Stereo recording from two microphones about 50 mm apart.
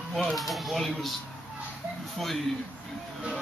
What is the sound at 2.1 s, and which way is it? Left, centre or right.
Speech, centre.